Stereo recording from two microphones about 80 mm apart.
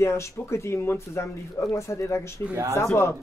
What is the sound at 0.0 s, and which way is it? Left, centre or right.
Speech, left.